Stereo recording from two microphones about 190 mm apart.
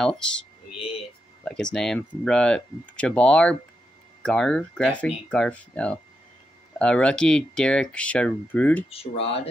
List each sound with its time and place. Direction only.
0.0 s speech: centre (ahead or behind)
8.9 s speech: 30° left (ahead or behind)